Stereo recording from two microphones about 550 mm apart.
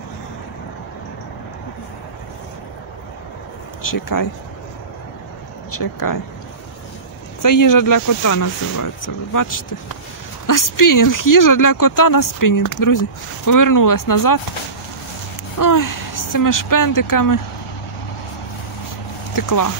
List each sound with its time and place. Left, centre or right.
3.8 s speech: left
5.8 s speech: left
7.4 s speech: left
15.6 s speech: left
19.3 s speech: left